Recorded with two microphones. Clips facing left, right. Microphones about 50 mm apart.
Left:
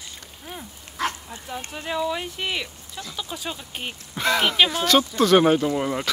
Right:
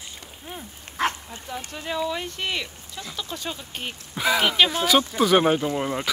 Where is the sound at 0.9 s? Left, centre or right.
Right.